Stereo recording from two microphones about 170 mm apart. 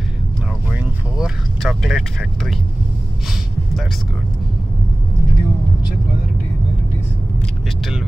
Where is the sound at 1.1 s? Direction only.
5° right (ahead or behind).